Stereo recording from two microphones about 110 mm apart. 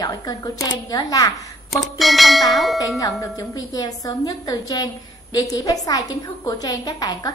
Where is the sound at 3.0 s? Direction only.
35° left (ahead or behind).